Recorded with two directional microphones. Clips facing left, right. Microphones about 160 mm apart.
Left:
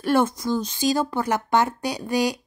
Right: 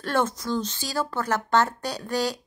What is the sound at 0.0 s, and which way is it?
Speech, 10° left (ahead or behind).